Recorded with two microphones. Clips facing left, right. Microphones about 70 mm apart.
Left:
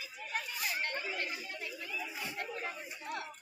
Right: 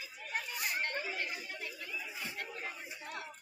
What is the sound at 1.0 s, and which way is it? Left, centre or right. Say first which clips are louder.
Chatter: even; centre.